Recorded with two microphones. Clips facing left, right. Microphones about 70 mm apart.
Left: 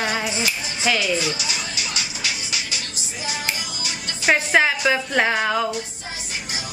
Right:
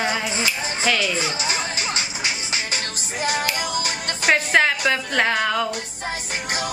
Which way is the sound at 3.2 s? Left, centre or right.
Right.